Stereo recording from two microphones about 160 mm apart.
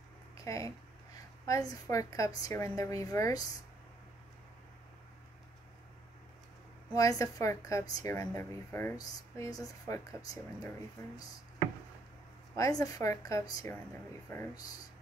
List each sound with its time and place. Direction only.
0.4 s speech: 20° left (ahead or behind)
7.0 s speech: 20° left (ahead or behind)
12.5 s speech: 20° left (ahead or behind)